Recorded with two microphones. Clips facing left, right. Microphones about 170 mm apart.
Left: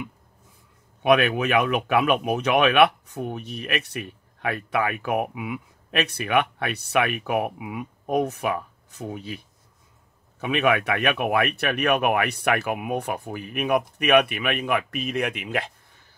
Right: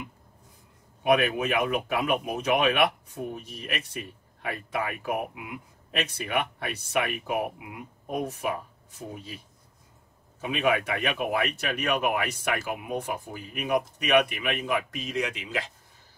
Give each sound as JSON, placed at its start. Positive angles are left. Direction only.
{"t": 1.0, "sound": "speech", "side_deg": 75}
{"t": 10.4, "sound": "speech", "side_deg": 70}